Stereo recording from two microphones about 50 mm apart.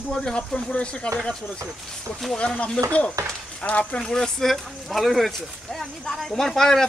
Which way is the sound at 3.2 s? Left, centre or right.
Right.